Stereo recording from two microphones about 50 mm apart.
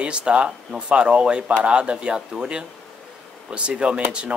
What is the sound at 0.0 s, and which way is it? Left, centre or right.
Speech, right.